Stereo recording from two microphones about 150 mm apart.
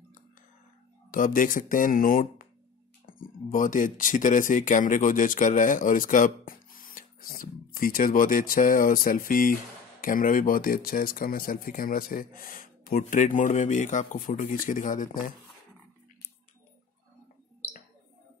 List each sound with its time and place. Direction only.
1.1 s speech: 65° left (ahead or behind)